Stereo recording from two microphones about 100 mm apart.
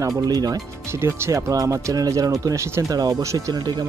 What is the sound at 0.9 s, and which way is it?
Speech, 25° right (ahead or behind).